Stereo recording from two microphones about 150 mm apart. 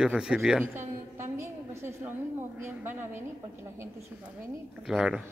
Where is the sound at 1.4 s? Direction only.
15° right (ahead or behind).